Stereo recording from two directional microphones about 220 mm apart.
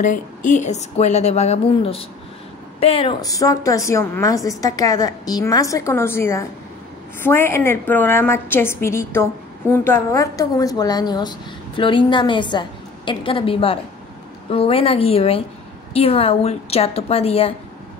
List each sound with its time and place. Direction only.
0.0 s a woman's voice: 35° left (ahead or behind)